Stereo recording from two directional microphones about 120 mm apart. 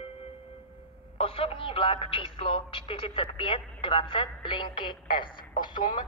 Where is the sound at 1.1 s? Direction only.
50° left (ahead or behind).